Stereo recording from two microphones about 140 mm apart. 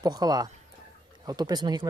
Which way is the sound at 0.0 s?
30° right (ahead or behind).